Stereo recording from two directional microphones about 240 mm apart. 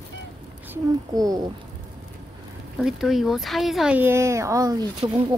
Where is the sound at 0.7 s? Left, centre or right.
Centre.